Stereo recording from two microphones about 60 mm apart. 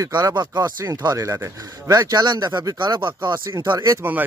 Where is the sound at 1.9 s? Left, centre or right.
Right.